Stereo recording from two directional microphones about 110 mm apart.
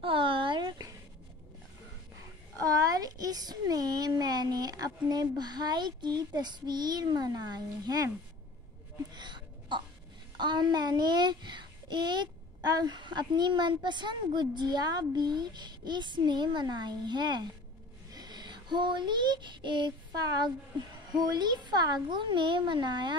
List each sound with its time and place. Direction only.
0.0 s a sound: 50° right (ahead or behind)
2.6 s a child's voice: 35° right (ahead or behind)
9.1 s a sound: 40° right (ahead or behind)
10.4 s a child's voice: 45° right (ahead or behind)
18.1 s child singing: 40° right (ahead or behind)
21.1 s a child's voice: 40° right (ahead or behind)